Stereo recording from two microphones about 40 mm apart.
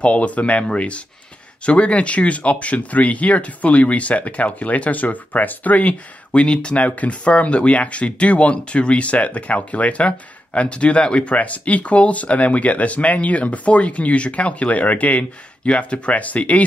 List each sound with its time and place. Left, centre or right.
0.0 s speech: left
11.3 s speech: left